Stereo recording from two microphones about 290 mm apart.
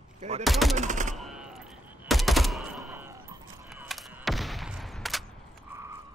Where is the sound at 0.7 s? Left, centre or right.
Right.